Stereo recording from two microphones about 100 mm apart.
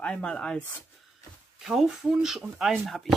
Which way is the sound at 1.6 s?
5° right (ahead or behind).